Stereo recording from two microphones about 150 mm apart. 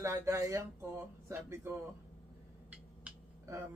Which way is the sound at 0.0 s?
20° right (ahead or behind).